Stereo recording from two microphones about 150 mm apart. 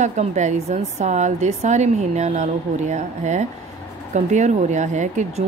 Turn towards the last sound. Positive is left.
turn(degrees=-50)  # may be behind; listen again after turning